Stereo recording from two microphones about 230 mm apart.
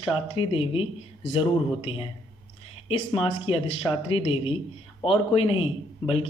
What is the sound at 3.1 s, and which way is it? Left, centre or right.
A man's voice, left.